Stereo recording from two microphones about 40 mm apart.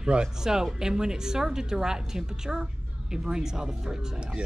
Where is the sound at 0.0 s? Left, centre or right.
Right.